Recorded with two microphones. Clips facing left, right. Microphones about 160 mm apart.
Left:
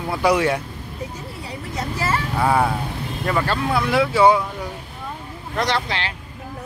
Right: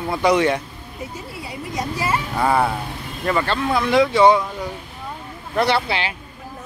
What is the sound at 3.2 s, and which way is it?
Speech, 5° left (ahead or behind).